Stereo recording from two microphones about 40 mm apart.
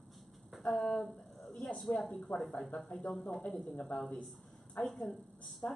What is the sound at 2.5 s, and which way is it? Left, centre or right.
Speech, left.